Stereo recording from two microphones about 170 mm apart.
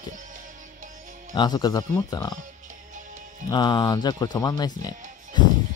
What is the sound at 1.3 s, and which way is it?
Speech, 25° left (ahead or behind).